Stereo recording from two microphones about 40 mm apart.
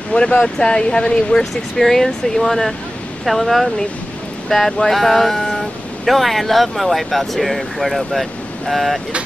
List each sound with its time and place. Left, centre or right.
0.1 s speech: left
1.4 s speech: centre